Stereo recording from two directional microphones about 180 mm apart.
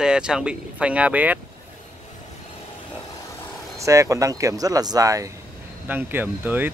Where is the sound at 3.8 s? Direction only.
15° right (ahead or behind).